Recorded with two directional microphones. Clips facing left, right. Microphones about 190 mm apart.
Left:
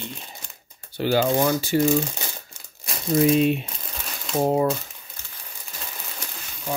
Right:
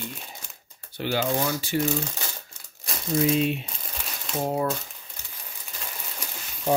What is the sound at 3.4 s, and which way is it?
Speech, 50° left (ahead or behind).